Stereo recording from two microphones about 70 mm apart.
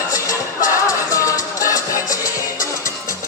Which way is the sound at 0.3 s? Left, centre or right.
Left.